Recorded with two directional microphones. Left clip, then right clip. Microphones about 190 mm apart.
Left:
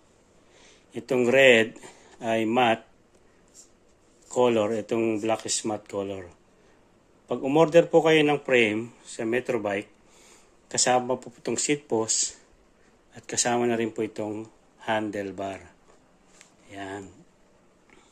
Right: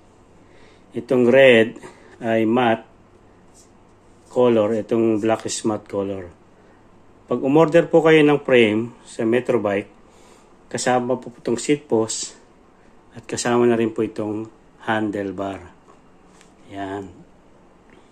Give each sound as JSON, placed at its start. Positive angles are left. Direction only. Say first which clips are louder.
{"t": 0.9, "sound": "a man's voice", "louder": "right 6 dB", "side_deg": 15}
{"t": 4.3, "sound": "a man's voice", "louder": "right 6 dB", "side_deg": 20}